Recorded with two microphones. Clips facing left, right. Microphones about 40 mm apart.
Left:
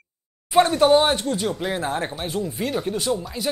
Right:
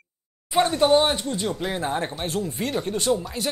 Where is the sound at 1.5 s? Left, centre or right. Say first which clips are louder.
Left 1 dB; centre.